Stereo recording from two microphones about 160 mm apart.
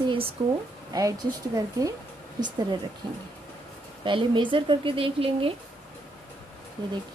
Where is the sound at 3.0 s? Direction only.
25° right (ahead or behind).